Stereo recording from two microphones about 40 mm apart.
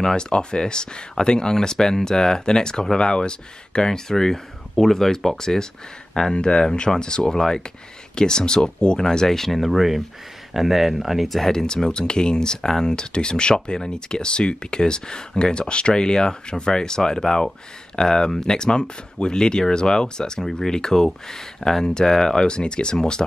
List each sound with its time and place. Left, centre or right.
0.0 s speech: centre
4.1 s speech: centre
11.5 s speech: centre